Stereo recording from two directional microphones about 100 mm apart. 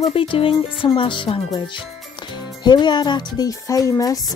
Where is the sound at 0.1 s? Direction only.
65° left (ahead or behind).